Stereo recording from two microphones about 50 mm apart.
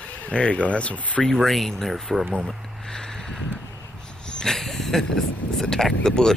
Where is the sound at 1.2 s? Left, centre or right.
Centre.